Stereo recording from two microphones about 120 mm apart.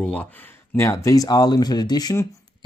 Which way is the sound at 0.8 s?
25° left (ahead or behind).